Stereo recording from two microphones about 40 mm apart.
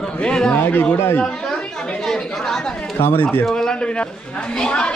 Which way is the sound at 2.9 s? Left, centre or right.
Left.